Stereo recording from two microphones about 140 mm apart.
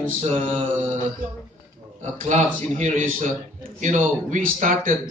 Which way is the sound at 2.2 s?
60° right (ahead or behind).